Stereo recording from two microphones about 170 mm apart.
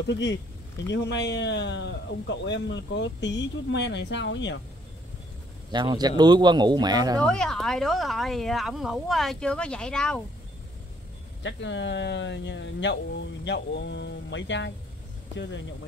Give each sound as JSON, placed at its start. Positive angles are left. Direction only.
{"t": 0.0, "sound": "speech", "side_deg": 90}
{"t": 5.7, "sound": "speech", "side_deg": -25}
{"t": 7.2, "sound": "speech", "side_deg": 5}
{"t": 11.4, "sound": "speech", "side_deg": 90}